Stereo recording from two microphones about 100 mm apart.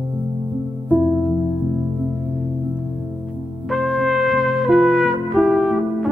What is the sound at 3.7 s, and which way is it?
Trumpet, centre (ahead or behind).